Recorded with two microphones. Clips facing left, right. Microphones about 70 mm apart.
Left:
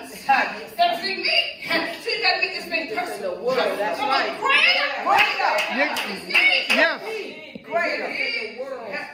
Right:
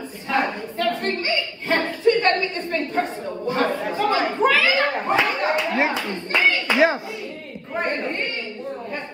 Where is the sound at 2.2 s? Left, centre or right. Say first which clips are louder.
Right 3 dB; right.